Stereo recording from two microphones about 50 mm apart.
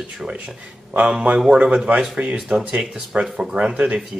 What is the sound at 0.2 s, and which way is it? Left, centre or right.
Speech, centre.